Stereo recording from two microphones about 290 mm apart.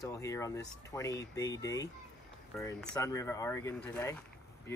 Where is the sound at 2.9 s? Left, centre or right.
Centre.